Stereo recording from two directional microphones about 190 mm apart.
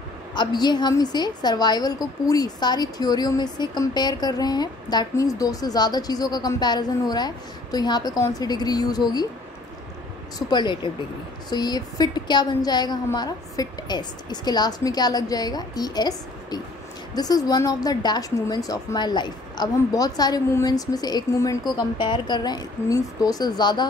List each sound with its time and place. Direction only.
0.3 s a woman's voice: 20° left (ahead or behind)
10.5 s a woman's voice: 25° left (ahead or behind)